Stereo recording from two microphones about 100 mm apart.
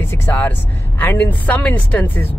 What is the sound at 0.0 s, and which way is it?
A woman's voice, 25° left (ahead or behind).